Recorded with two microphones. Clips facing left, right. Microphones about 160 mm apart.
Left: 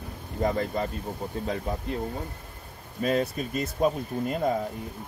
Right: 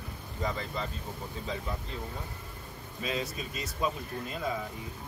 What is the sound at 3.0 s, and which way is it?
Speech, 50° left (ahead or behind).